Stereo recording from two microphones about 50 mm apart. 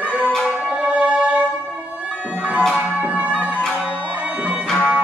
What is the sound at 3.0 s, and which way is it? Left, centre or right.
Music, right.